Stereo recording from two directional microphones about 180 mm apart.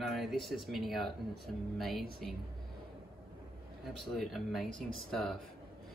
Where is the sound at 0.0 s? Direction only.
Centre (ahead or behind).